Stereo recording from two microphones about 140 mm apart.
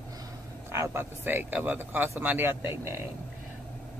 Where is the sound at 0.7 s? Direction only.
20° right (ahead or behind).